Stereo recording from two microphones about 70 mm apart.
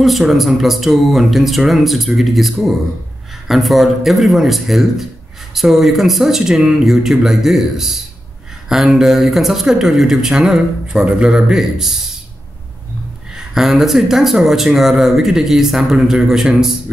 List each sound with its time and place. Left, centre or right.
0.0 s speech: centre
13.6 s speech: centre